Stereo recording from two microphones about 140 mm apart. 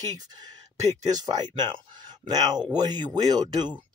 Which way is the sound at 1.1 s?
30° right (ahead or behind).